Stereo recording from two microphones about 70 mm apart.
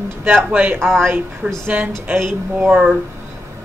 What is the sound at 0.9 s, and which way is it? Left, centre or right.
Speech, right.